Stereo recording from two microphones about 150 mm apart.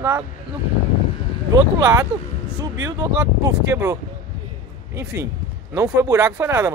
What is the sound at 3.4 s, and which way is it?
Speech, 20° right (ahead or behind).